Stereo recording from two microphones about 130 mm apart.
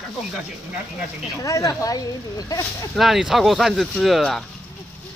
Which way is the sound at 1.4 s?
25° left (ahead or behind).